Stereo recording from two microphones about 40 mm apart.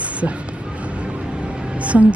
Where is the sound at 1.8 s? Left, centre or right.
Right.